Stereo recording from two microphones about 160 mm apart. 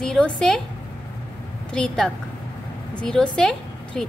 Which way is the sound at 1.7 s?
5° left (ahead or behind).